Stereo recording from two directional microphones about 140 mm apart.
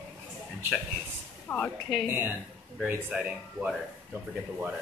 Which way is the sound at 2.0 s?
15° right (ahead or behind).